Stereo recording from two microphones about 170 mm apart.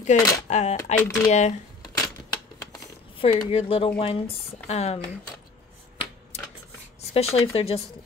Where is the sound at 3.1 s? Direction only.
35° left (ahead or behind).